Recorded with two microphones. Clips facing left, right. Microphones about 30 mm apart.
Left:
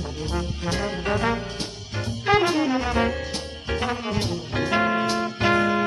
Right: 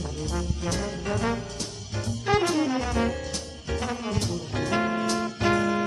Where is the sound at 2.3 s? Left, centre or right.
Left.